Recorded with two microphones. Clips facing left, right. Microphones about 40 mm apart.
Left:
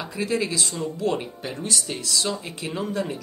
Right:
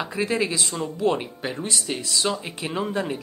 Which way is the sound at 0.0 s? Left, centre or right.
Right.